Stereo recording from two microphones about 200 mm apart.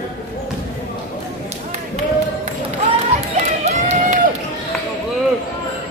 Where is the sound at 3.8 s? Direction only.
35° right (ahead or behind).